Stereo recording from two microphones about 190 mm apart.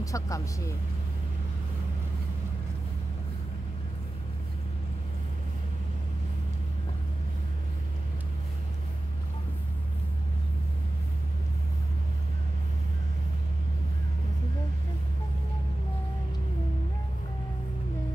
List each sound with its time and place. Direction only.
0.0 s speech: 15° left (ahead or behind)